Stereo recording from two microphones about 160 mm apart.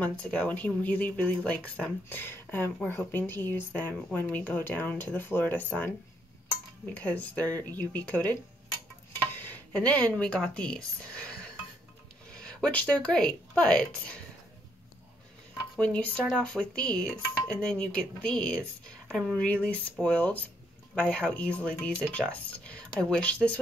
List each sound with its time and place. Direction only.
0.0 s speech: 10° left (ahead or behind)
7.0 s speech: 10° left (ahead or behind)
15.7 s speech: 5° left (ahead or behind)